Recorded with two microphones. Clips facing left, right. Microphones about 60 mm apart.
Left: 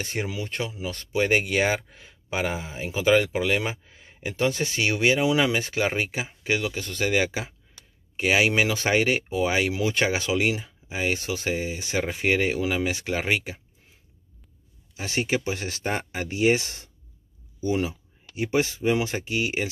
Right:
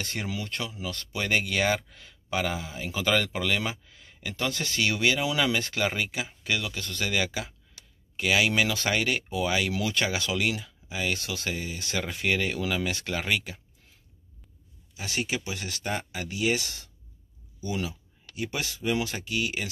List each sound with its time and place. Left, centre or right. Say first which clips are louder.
0.0 s speech: left 3 dB; centre
15.0 s speech: left 5 dB; left